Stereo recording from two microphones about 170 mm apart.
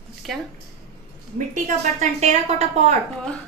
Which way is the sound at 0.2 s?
Centre (ahead or behind).